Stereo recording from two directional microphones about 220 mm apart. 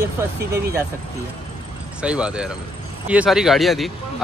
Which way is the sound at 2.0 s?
5° right (ahead or behind).